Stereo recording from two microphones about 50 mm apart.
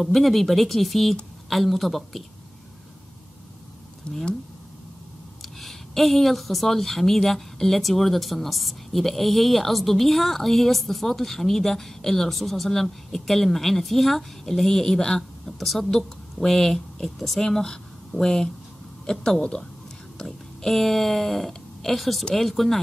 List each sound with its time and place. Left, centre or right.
0.0 s a woman's voice: centre
4.1 s speech: left
5.4 s a woman's voice: centre